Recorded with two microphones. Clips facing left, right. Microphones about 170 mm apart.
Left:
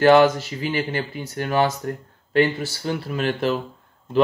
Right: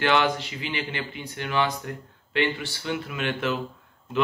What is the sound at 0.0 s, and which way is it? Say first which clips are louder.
Speech: left 9 dB; 40° left (ahead or behind).